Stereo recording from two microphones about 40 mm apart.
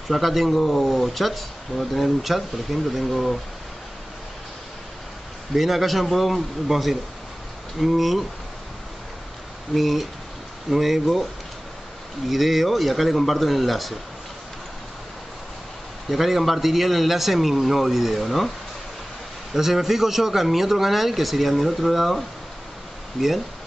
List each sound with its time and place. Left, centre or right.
0.1 s speech: centre
5.5 s speech: centre
9.8 s speech: centre
12.3 s speech: centre
16.1 s speech: centre
19.5 s speech: centre